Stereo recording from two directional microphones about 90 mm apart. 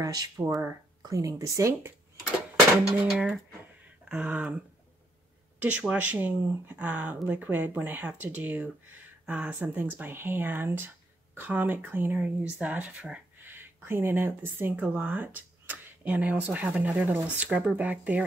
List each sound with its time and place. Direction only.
0.0 s speech: 45° right (ahead or behind)
4.1 s speech: 10° right (ahead or behind)
5.6 s speech: 15° right (ahead or behind)